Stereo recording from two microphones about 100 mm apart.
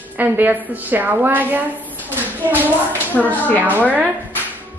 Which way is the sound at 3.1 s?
15° left (ahead or behind).